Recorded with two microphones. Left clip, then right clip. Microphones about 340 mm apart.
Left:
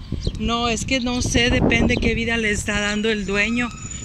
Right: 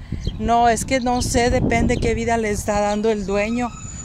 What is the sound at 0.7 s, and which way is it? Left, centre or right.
Speech, right.